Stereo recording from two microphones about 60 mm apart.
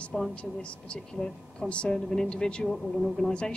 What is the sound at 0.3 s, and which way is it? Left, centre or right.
A woman's voice, centre.